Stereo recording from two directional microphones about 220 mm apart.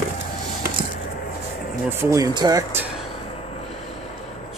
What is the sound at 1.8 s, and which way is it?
Speech, 15° right (ahead or behind).